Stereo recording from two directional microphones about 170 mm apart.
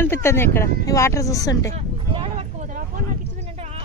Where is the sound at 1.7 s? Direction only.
35° right (ahead or behind).